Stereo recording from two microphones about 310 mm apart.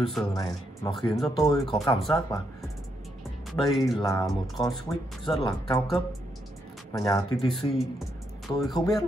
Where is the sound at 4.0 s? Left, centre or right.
Centre.